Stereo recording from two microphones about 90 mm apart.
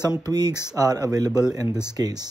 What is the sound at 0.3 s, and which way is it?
Speech, 45° right (ahead or behind).